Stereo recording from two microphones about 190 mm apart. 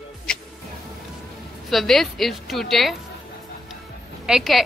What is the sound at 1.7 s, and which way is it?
Speech, centre (ahead or behind).